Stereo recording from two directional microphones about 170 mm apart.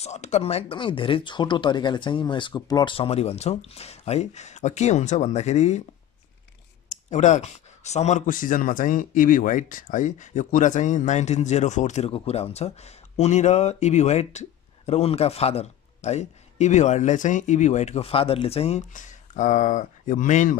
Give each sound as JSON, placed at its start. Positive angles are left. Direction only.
{"t": 0.0, "sound": "speech", "side_deg": 40}
{"t": 6.9, "sound": "speech", "side_deg": 45}